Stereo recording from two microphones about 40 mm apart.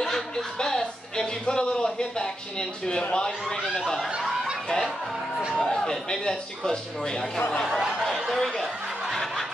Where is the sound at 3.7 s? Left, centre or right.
Centre.